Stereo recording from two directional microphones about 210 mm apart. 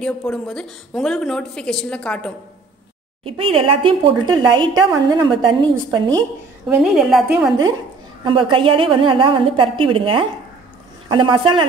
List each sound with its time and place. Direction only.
0.0 s a woman's voice: 5° left (ahead or behind)
3.3 s a woman's voice: 25° right (ahead or behind)
6.7 s a woman's voice: centre (ahead or behind)
8.2 s a woman's voice: 20° right (ahead or behind)